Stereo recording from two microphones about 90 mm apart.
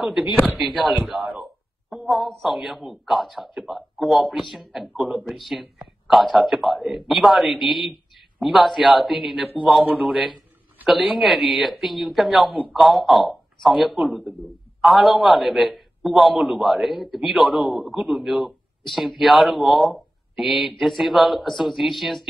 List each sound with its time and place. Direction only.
0.0 s speech: 5° right (ahead or behind)
0.7 s a man's voice: 15° right (ahead or behind)
1.3 s speech: centre (ahead or behind)
9.8 s a man's voice: 15° right (ahead or behind); by 22.2 s centre (ahead or behind)